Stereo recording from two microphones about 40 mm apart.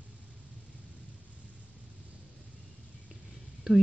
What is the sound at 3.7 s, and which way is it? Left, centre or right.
Speech, centre.